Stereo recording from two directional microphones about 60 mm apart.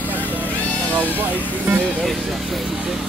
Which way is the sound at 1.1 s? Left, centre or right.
Right.